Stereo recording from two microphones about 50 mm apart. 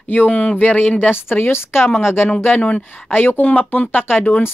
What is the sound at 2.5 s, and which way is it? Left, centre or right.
Speech, centre.